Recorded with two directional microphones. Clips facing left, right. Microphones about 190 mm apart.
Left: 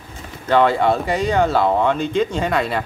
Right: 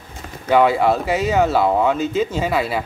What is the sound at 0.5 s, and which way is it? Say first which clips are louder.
Speech: right 1 dB; 10° right (ahead or behind).